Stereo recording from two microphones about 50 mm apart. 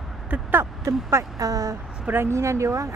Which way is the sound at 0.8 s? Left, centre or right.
Right.